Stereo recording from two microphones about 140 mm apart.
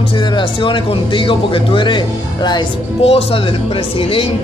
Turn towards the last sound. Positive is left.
turn(degrees=40)  # may be behind; listen again after turning